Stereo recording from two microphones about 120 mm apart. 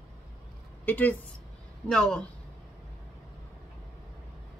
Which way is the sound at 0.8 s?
15° left (ahead or behind).